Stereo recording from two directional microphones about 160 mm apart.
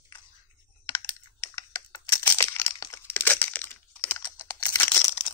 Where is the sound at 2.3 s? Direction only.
15° left (ahead or behind).